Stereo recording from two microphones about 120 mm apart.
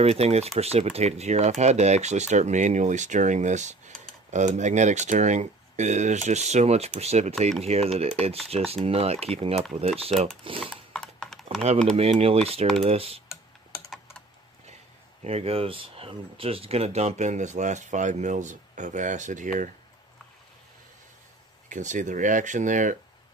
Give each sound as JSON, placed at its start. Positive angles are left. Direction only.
{"t": 0.0, "sound": "speech", "side_deg": -60}
{"t": 10.6, "sound": "a sound", "side_deg": 5}
{"t": 11.7, "sound": "speech", "side_deg": -65}
{"t": 15.2, "sound": "speech", "side_deg": -55}
{"t": 21.6, "sound": "speech", "side_deg": -90}